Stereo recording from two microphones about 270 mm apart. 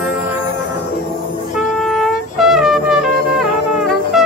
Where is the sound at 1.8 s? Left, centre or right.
Centre.